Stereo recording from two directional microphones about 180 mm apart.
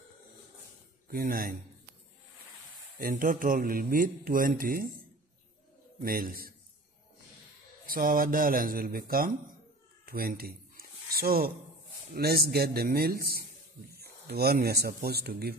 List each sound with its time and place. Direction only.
1.0 s speech: 55° right (ahead or behind)
3.0 s speech: 50° right (ahead or behind)
6.0 s speech: 55° right (ahead or behind)
7.8 s speech: 50° right (ahead or behind)
10.0 s a sound: 55° right (ahead or behind)
12.1 s a man's voice: 60° right (ahead or behind)